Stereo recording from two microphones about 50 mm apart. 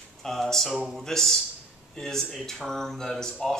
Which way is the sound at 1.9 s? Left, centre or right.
Centre.